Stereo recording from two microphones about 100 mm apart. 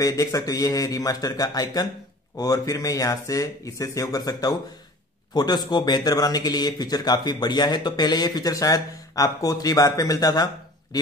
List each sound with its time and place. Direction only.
0.0 s a man's voice: 35° left (ahead or behind)